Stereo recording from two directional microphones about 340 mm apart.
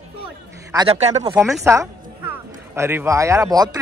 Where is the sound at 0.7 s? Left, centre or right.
Centre.